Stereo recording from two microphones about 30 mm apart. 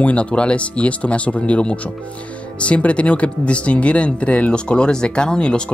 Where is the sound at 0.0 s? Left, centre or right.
Left.